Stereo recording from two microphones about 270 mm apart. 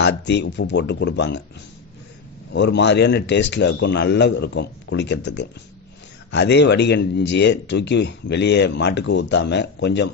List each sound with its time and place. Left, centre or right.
0.0 s speech: left
2.5 s speech: left